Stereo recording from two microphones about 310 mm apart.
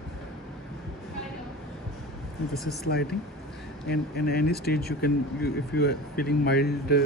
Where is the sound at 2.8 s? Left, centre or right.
Left.